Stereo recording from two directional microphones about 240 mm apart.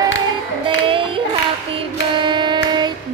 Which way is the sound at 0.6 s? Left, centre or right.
Right.